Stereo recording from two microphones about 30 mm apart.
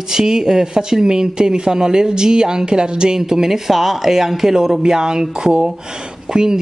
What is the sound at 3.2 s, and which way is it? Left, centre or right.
Speech, centre.